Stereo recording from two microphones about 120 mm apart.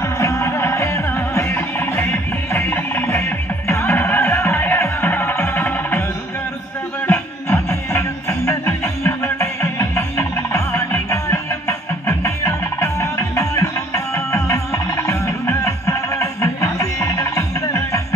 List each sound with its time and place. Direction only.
0.2 s music: 25° left (ahead or behind)
7.1 s music: 20° left (ahead or behind)